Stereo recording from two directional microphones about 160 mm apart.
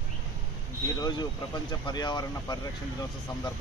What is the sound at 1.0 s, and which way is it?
Speech, 25° left (ahead or behind).